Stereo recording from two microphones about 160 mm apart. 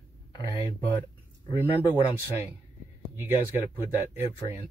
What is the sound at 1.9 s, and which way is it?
Speech, 10° right (ahead or behind).